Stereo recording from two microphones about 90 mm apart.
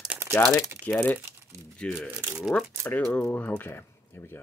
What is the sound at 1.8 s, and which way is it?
Speech, 10° left (ahead or behind).